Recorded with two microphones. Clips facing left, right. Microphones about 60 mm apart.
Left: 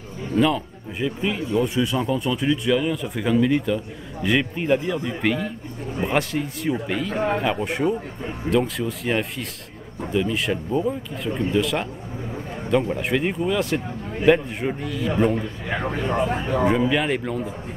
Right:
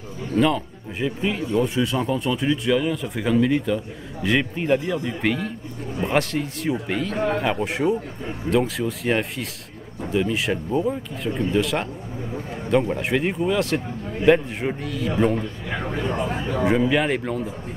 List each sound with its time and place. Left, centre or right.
0.4 s speech: centre
7.2 s speech: left
7.4 s speech: centre
15.8 s speech: left
16.6 s speech: centre